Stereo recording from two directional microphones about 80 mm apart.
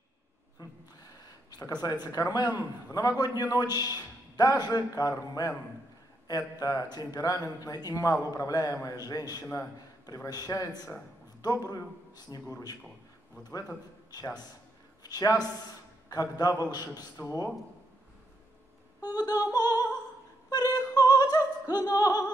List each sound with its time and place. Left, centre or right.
0.6 s a man's voice: left
18.9 s music: left
20.4 s opera: left